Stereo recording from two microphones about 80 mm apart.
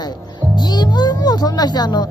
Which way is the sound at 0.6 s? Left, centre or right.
Left.